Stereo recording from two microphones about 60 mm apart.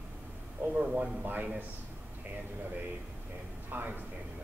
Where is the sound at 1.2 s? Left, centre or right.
Right.